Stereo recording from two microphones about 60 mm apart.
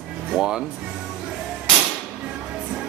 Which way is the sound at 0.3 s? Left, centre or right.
Centre.